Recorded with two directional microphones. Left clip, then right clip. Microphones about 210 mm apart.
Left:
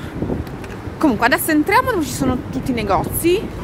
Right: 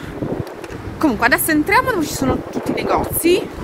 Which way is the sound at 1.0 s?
10° left (ahead or behind).